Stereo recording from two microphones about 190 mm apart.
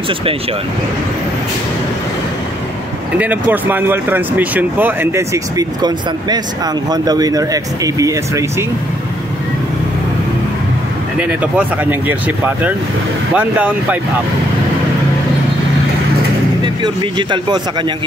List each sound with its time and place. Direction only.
3.2 s speech: 10° right (ahead or behind)
11.1 s speech: 5° right (ahead or behind)
16.6 s speech: 25° right (ahead or behind)